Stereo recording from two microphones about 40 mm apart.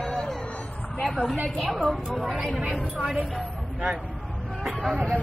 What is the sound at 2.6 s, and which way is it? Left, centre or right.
Speech, right.